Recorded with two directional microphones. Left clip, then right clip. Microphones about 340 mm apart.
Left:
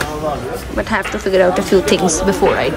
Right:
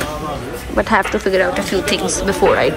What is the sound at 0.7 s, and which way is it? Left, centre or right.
Speech, centre.